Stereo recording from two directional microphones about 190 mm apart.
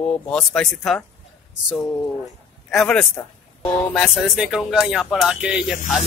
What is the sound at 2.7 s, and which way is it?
Speech, 5° left (ahead or behind).